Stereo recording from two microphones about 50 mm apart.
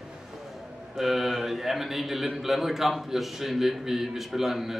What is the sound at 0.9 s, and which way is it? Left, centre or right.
A man's voice, centre.